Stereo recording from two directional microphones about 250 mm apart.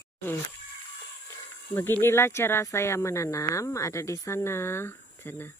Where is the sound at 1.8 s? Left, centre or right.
Centre.